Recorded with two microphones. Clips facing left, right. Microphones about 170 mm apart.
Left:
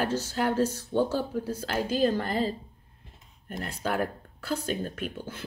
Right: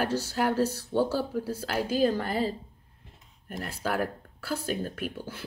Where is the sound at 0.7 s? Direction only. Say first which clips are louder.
Even; 15° left (ahead or behind).